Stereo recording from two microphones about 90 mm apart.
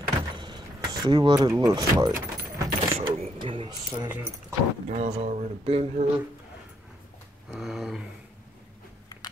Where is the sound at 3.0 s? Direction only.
75° right (ahead or behind).